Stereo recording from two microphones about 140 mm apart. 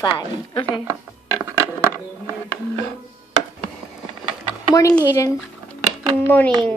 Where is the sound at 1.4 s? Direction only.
20° right (ahead or behind).